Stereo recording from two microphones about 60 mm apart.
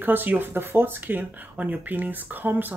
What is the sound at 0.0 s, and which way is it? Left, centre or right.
Speech, right.